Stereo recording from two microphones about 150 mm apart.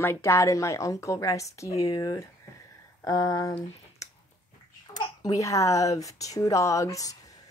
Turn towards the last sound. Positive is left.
turn(degrees=25)  # may be behind; listen again after turning